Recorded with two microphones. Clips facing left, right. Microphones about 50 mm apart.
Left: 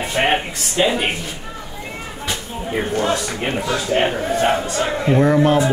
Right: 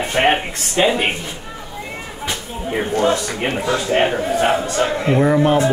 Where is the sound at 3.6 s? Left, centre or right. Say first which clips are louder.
Right 2 dB; right.